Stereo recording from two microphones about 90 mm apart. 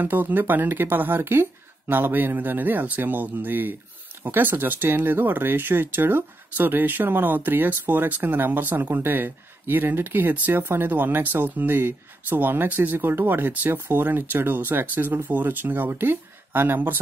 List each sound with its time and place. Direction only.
0.0 s speech: 20° right (ahead or behind)